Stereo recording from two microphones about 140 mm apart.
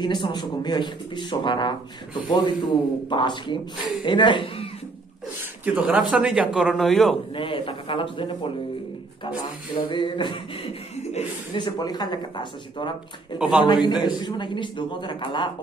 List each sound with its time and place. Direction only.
0.0 s a man's voice: 35° left (ahead or behind)
5.8 s a man's voice: 5° right (ahead or behind)
7.3 s a man's voice: 40° left (ahead or behind)
9.8 s a man's voice: 35° left (ahead or behind)
11.5 s a man's voice: 30° left (ahead or behind)
13.4 s a man's voice: 5° right (ahead or behind)
13.8 s a man's voice: 30° left (ahead or behind)